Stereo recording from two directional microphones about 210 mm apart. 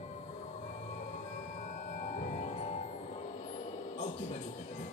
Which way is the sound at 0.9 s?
35° left (ahead or behind).